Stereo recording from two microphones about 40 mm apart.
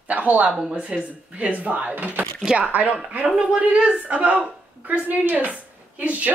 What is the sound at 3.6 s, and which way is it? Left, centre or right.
Speech, right.